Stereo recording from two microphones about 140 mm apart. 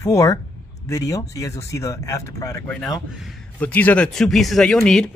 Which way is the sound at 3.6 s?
10° left (ahead or behind).